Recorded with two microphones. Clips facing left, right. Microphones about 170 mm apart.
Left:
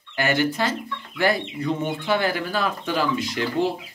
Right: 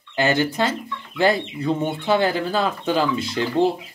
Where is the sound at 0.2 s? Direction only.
25° right (ahead or behind).